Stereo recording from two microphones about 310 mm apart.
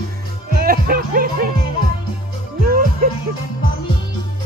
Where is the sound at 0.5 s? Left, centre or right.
Right.